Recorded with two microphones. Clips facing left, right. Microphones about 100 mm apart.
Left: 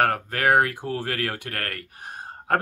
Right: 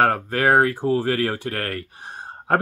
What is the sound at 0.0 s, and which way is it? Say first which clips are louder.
Speech: right 3 dB; 30° right (ahead or behind).